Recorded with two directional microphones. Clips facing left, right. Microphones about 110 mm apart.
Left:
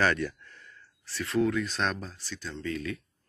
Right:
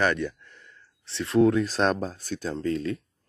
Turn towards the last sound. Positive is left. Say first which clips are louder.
# right 6 dB
turn(degrees=-30)  # may be behind; listen again after turning